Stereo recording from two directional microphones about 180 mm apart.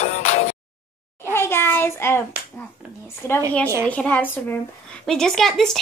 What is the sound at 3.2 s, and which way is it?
A woman's voice, 15° left (ahead or behind).